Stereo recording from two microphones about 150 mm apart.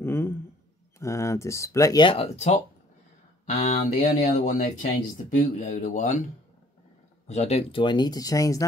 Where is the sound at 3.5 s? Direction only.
70° left (ahead or behind).